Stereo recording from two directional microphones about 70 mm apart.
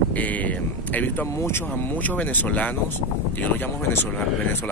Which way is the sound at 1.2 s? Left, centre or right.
Left.